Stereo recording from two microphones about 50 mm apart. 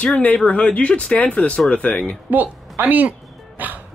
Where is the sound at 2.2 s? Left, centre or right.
Right.